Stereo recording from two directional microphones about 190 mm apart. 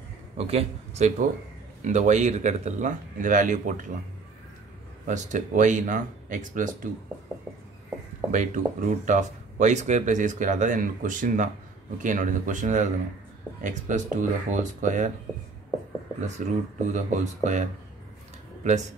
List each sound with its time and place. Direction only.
0.4 s a man's voice: 35° right (ahead or behind)
5.0 s speech: 40° right (ahead or behind)
8.3 s speech: 40° right (ahead or behind)
15.3 s speech: 5° right (ahead or behind)
16.2 s speech: 40° right (ahead or behind)